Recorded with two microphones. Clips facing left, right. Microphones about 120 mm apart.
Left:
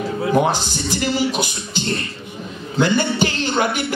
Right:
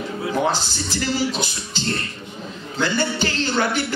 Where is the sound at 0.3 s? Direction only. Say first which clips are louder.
Left 4 dB; 15° left (ahead or behind).